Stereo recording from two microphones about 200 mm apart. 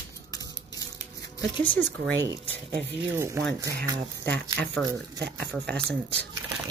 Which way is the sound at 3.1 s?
15° right (ahead or behind).